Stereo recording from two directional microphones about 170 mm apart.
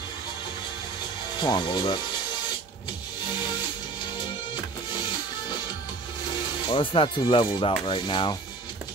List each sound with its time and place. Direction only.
1.4 s speech: 25° left (ahead or behind)
6.7 s speech: 30° left (ahead or behind)